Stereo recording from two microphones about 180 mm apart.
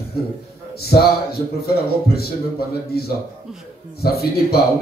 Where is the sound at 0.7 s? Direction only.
60° left (ahead or behind).